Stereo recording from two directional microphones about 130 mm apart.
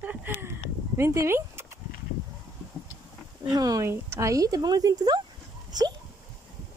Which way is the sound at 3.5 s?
30° right (ahead or behind).